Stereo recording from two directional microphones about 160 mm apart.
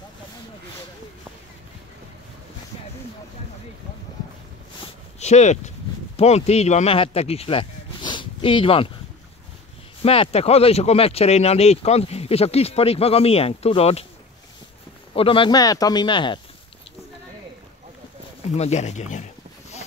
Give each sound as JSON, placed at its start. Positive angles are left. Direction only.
{"t": 5.2, "sound": "speech", "side_deg": 45}
{"t": 10.0, "sound": "speech", "side_deg": 35}
{"t": 15.1, "sound": "speech", "side_deg": 35}
{"t": 18.6, "sound": "speech", "side_deg": 45}